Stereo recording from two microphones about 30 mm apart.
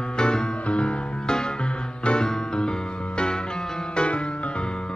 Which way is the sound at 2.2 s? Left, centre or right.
Left.